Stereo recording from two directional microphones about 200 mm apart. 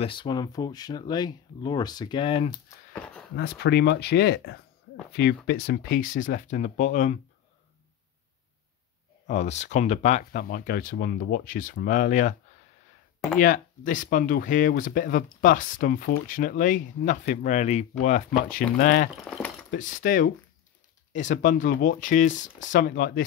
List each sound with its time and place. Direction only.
0.0 s speech: 25° left (ahead or behind)
2.9 s a sound: 5° left (ahead or behind)
3.3 s speech: 55° left (ahead or behind); by 7.2 s 35° left (ahead or behind)
9.3 s speech: 35° left (ahead or behind)
13.4 s speech: 40° left (ahead or behind)
19.2 s a sound: 5° left (ahead or behind)
19.7 s speech: 40° left (ahead or behind)